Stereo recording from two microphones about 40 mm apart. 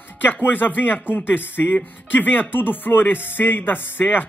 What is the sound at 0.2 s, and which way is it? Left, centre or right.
Speech, left.